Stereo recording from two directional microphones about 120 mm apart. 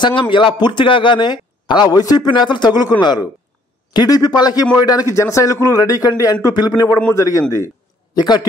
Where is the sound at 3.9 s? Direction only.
30° left (ahead or behind).